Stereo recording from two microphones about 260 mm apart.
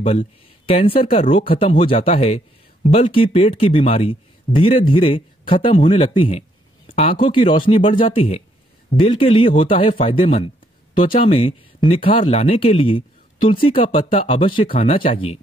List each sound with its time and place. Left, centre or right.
0.0 s speech: left